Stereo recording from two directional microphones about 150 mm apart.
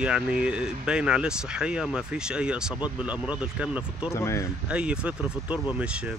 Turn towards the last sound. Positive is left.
turn(degrees=-10)  # may be behind; listen again after turning